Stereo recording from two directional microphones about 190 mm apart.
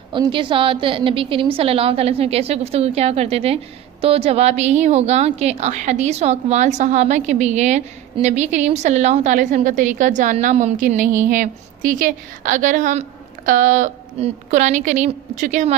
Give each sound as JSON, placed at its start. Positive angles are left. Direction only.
{"t": 0.1, "sound": "a woman's voice", "side_deg": -25}